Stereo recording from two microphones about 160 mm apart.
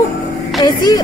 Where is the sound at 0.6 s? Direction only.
25° left (ahead or behind).